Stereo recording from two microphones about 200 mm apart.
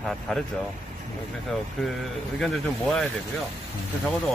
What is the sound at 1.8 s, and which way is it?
Speech, 5° left (ahead or behind).